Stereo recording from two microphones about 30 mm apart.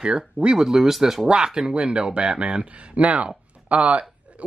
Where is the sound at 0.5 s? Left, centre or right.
Right.